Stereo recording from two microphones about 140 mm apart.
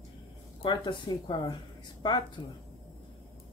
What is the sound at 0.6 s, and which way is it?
Speech, 35° left (ahead or behind).